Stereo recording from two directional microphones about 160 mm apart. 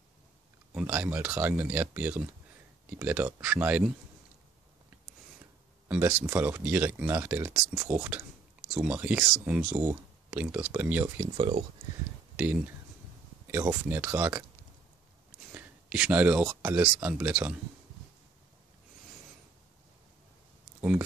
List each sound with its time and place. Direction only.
0.7 s speech: 10° right (ahead or behind)
5.9 s speech: 10° right (ahead or behind)
11.3 s speech: 35° right (ahead or behind)
12.4 s speech: 10° right (ahead or behind)
15.5 s speech: 10° right (ahead or behind)